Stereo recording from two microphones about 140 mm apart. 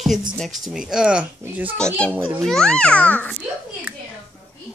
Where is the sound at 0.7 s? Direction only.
5° right (ahead or behind).